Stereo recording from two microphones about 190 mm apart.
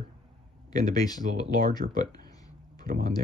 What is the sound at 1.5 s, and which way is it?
Speech, 50° right (ahead or behind).